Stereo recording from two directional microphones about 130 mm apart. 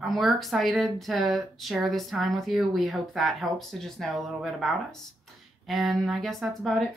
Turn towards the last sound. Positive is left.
turn(degrees=0)  # may be behind; listen again after turning